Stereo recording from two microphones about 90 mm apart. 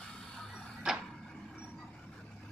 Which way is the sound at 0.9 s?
5° right (ahead or behind).